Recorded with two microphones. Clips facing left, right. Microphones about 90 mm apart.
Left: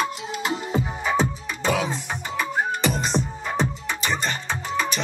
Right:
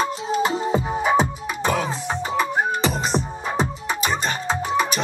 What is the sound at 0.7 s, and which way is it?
Music, 20° right (ahead or behind).